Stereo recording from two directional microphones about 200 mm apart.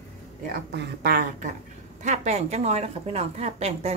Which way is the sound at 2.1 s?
30° right (ahead or behind).